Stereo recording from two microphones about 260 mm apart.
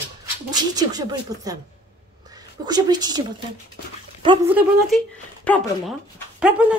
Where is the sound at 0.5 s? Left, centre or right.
Centre.